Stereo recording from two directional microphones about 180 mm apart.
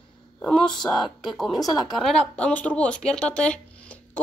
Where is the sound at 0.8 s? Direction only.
25° left (ahead or behind).